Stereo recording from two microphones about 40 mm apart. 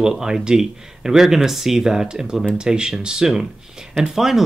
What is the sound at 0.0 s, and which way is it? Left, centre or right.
Speech, centre.